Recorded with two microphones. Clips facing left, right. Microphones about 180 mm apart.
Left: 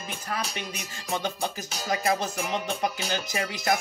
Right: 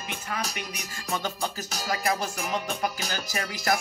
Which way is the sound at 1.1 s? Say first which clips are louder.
Left 1 dB; 20° left (ahead or behind).